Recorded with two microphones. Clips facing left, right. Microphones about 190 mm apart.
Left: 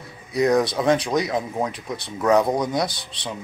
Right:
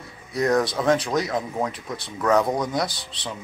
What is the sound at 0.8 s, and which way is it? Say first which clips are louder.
Speech: left 1 dB; 10° left (ahead or behind).